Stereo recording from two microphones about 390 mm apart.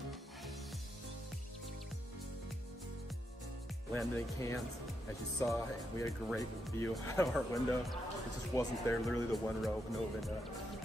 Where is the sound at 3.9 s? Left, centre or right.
Centre.